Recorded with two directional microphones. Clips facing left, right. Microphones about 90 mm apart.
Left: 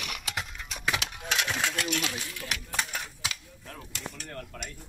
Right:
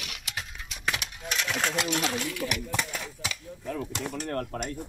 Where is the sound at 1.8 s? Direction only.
35° right (ahead or behind).